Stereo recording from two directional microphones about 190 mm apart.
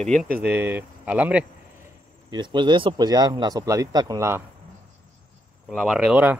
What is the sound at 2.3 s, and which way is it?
Speech, 25° right (ahead or behind).